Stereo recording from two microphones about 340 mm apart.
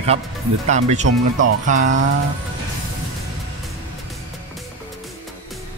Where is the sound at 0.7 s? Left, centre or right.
Right.